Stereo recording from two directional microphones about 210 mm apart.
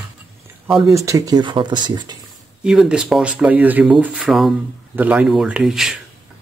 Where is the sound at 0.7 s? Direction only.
15° right (ahead or behind).